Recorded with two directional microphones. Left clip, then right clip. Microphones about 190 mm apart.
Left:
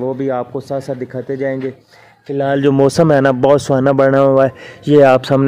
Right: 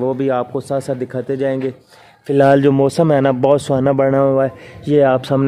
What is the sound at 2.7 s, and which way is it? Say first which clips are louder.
Speech: left 3 dB; 20° left (ahead or behind).